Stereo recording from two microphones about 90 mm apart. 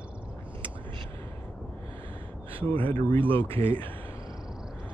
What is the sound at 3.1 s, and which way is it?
Speech, 80° right.